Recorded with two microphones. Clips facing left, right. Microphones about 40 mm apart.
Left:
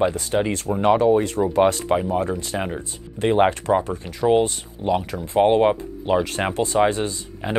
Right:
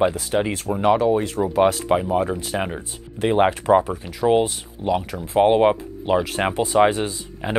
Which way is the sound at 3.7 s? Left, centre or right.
Centre.